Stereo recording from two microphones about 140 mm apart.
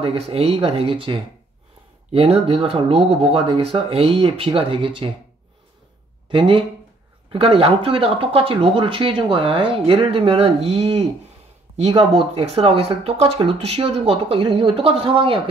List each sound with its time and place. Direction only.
0.0 s speech: 45° right (ahead or behind)
6.3 s speech: 40° right (ahead or behind)